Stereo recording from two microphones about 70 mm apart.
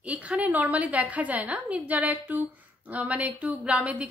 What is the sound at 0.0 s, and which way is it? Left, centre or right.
A woman's voice, centre.